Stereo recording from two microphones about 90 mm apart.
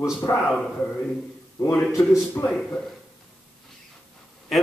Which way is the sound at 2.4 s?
30° left (ahead or behind).